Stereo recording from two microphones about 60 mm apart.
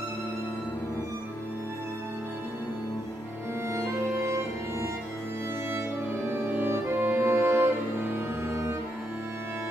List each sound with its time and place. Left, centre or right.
6.3 s cello: right